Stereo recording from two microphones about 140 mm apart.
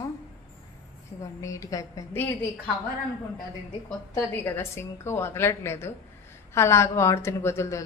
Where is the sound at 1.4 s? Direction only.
20° left (ahead or behind).